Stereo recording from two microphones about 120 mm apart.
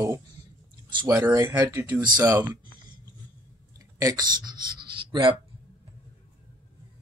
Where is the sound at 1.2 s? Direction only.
30° right (ahead or behind).